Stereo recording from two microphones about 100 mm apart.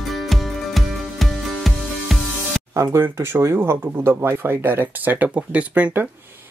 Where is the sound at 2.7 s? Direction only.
30° right (ahead or behind).